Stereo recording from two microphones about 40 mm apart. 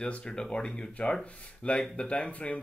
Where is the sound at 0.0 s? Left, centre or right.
Left.